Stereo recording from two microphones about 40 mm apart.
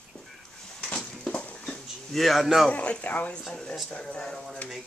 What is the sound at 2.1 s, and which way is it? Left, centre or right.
Speech, centre.